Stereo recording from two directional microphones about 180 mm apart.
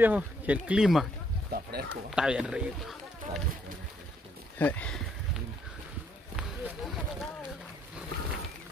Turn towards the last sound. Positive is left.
turn(degrees=0)  # may be behind; listen again after turning